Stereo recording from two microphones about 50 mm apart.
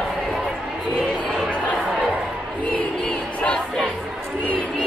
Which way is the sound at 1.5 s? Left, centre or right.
Left.